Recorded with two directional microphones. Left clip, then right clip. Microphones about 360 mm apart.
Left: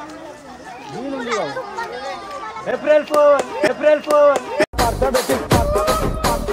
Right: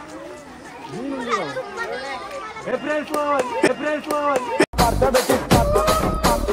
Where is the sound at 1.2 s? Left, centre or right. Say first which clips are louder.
Left 1 dB; left.